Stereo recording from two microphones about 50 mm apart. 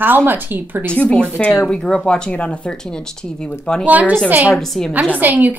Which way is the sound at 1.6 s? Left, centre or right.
Centre.